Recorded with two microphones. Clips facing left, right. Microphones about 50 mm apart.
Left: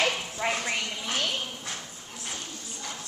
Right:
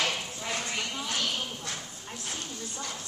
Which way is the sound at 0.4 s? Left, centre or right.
Left.